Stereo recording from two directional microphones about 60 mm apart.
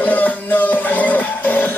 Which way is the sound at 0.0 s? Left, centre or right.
Left.